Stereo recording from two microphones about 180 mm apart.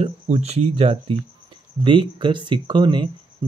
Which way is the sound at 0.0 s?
35° right (ahead or behind).